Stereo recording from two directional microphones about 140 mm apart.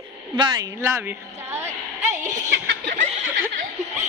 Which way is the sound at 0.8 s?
15° right (ahead or behind).